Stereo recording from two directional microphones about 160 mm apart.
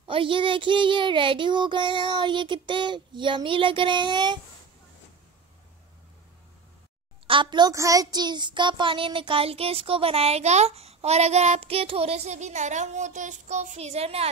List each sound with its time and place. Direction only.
0.0 s a child's voice: 35° right (ahead or behind)
7.2 s a child's voice: 30° right (ahead or behind)